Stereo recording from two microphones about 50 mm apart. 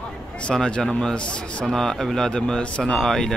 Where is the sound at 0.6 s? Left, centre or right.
Centre.